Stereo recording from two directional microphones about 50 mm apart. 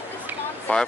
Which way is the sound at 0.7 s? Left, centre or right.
Left.